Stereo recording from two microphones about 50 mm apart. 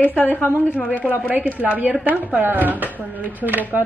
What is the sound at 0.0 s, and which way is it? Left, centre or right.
Speech, left.